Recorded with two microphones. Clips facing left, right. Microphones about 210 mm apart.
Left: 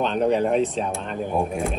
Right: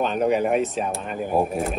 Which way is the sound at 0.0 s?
5° right (ahead or behind).